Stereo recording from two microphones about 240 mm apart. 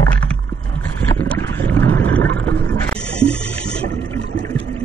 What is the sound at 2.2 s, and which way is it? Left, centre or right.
Vehicle, right.